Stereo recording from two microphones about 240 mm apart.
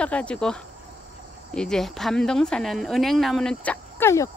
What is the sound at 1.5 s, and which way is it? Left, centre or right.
Speech, centre.